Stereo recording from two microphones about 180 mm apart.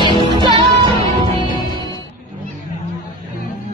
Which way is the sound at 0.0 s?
25° left (ahead or behind).